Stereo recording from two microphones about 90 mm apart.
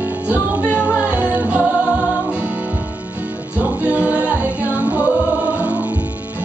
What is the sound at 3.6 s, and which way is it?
Music, 15° right (ahead or behind).